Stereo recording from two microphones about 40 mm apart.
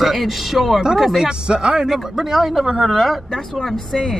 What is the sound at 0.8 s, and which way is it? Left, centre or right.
Speech, centre.